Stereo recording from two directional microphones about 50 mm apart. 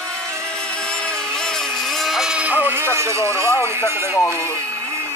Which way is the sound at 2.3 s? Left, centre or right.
Right.